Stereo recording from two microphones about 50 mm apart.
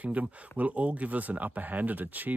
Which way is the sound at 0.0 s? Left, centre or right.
Right.